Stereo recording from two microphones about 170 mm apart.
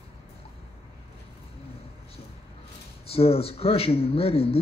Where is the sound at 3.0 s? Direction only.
35° left (ahead or behind).